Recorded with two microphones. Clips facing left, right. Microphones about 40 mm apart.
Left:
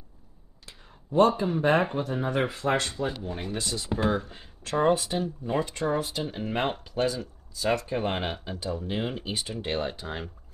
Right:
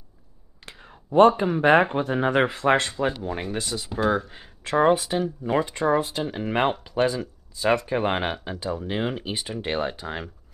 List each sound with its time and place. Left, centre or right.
0.7 s speech: right
3.6 s speech: right
5.2 s speech: right
5.6 s speech: right
6.3 s speech: right
7.5 s speech: right
7.8 s speech: right